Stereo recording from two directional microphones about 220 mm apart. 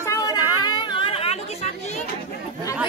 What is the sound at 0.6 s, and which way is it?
Chatter, 20° left (ahead or behind).